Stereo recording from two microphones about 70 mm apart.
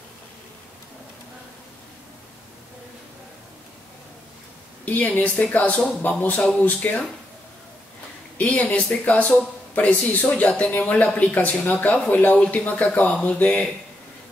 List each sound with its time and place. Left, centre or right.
4.8 s speech: left
8.4 s speech: left